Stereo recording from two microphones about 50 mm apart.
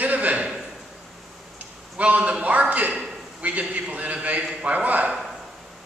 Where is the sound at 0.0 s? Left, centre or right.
Right.